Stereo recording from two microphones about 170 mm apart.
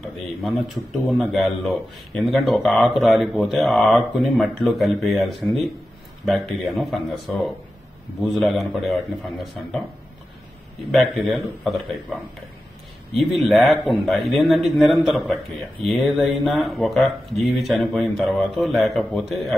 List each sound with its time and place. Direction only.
1.2 s speech: centre (ahead or behind)
10.9 s speech: centre (ahead or behind)